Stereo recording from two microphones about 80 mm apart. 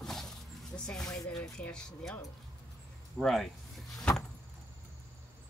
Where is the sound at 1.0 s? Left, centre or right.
Left.